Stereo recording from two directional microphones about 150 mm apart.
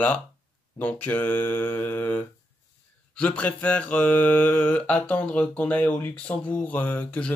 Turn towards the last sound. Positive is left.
turn(degrees=10)  # may be behind; listen again after turning